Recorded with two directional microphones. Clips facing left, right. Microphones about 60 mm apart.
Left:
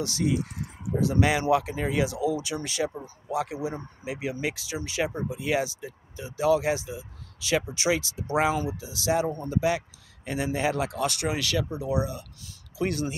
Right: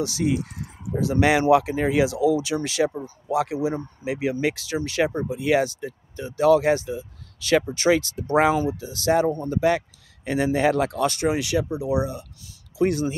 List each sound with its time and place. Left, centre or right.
1.0 s speech: right
1.5 s speech: right
4.0 s speech: right
11.2 s speech: right